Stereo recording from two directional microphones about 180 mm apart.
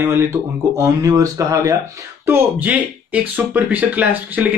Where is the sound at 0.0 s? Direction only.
15° right (ahead or behind).